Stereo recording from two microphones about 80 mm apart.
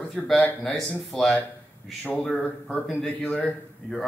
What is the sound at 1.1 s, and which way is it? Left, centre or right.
Speech, centre.